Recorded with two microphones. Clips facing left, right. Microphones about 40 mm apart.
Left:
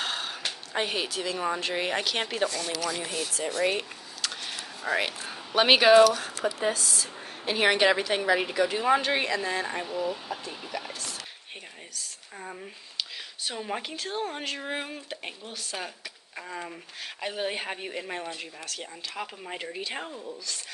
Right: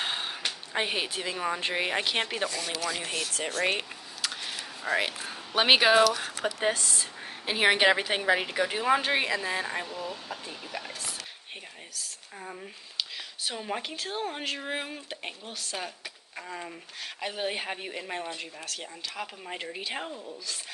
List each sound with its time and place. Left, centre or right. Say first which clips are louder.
0.0 s a sound: even; centre
0.7 s speech: left 1 dB; centre
2.9 s speech: even; right
4.2 s a sound: even; centre
6.4 s speech: even; right
7.4 s speech: even; centre
7.8 s speech: even; centre
8.8 s speech: right 1 dB; centre
10.7 s speech: left 2 dB; centre
11.9 s speech: even; centre